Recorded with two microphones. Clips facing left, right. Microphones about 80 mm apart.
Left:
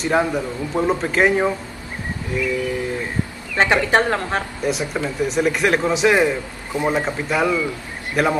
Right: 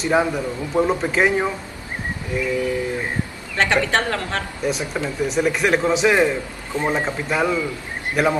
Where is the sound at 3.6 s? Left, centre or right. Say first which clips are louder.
Left 3 dB; centre.